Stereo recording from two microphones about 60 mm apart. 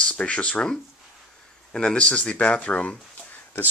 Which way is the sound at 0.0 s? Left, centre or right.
Centre.